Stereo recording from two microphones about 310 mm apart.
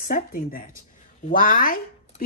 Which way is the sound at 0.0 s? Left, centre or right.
Left.